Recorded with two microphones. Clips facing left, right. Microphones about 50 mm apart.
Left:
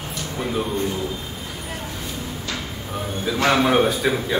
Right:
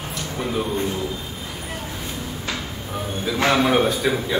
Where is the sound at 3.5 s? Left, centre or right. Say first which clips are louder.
Left 1 dB; centre.